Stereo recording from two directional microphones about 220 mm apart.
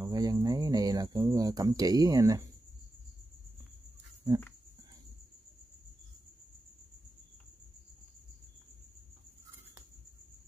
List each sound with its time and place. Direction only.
0.0 s cricket: 15° right (ahead or behind)